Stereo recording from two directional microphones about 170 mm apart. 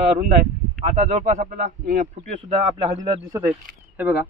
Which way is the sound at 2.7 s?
25° right (ahead or behind).